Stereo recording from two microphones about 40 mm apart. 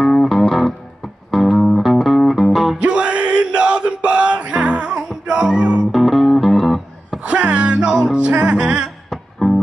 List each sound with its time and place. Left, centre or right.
0.0 s music: centre
2.8 s music: right
5.9 s music: centre
7.2 s music: right
9.1 s music: centre